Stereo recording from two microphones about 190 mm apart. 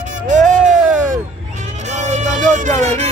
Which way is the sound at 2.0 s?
40° right (ahead or behind).